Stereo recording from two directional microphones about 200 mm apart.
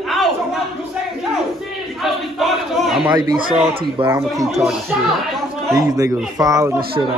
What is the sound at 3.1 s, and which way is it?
A man's voice, 20° right (ahead or behind).